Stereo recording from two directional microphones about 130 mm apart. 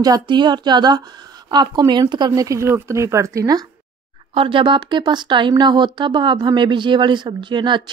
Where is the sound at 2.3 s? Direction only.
25° right (ahead or behind).